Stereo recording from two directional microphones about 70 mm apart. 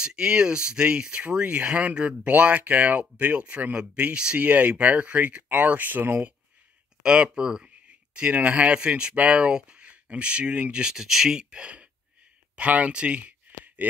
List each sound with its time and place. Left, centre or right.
0.0 s speech: centre; by 6.3 s right
7.0 s speech: centre